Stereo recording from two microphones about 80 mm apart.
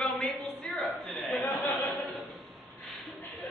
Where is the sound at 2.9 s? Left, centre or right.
Centre.